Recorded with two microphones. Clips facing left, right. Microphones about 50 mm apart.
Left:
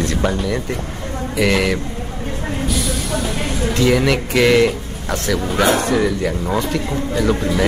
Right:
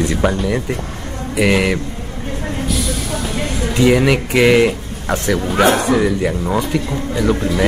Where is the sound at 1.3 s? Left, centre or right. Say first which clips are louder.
Right 2 dB; centre.